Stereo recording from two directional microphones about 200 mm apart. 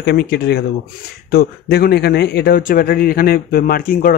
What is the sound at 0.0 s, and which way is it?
Speech, 55° left (ahead or behind).